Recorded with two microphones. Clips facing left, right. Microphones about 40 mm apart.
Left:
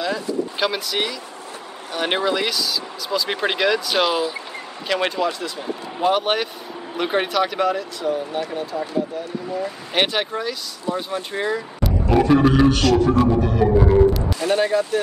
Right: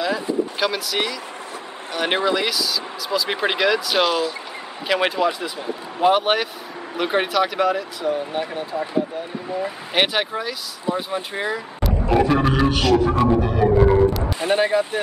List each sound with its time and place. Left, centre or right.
0.6 s speech: centre
4.8 s speech: centre
9.9 s speech: centre